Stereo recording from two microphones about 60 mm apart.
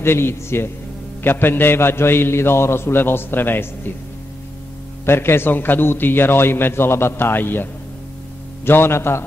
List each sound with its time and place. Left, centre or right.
0.0 s a man's voice: left
5.0 s a man's voice: left
8.6 s a man's voice: left